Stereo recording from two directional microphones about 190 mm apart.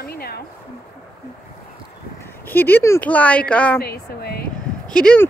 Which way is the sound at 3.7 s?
55° left (ahead or behind).